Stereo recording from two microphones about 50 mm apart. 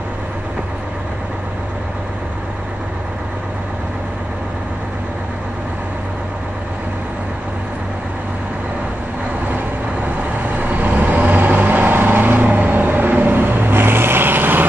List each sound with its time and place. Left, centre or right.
10.0 s vehicle: right